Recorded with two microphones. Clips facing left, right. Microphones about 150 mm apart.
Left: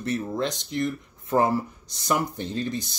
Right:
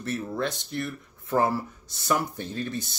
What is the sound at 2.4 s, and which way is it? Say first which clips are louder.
Speech: left 3 dB; 10° right (ahead or behind).